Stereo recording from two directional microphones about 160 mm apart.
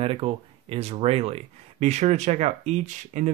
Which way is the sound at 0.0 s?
35° right (ahead or behind).